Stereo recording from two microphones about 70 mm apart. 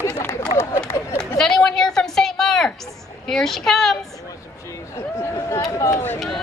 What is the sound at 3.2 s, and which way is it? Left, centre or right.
Speech, centre.